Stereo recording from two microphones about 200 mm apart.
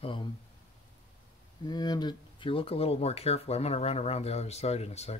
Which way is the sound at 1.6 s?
20° left (ahead or behind).